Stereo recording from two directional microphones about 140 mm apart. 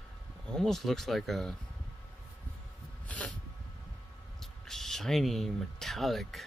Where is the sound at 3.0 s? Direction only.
10° left (ahead or behind).